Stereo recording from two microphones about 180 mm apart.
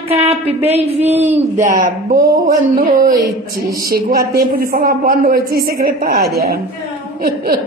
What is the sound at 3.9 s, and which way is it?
A woman's voice, 55° right (ahead or behind).